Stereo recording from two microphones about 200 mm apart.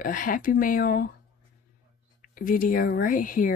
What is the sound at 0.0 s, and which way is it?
Speech, 45° left (ahead or behind).